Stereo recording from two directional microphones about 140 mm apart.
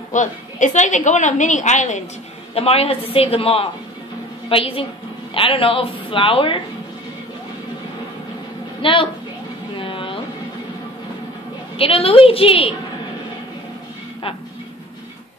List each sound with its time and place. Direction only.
0.1 s a woman's voice: 60° left (ahead or behind)
2.5 s a woman's voice: 45° left (ahead or behind)
8.8 s a woman's voice: 40° left (ahead or behind)
9.8 s a sound: 40° left (ahead or behind)
11.8 s a woman's voice: 40° left (ahead or behind)